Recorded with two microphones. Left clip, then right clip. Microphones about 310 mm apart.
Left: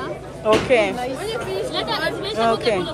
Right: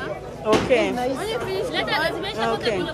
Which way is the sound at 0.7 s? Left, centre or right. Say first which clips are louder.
Left 2 dB; right.